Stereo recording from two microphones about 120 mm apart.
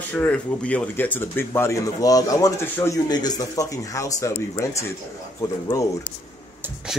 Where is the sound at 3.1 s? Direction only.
35° left (ahead or behind).